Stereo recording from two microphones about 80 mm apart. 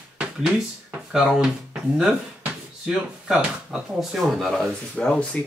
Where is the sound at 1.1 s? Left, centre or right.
Centre.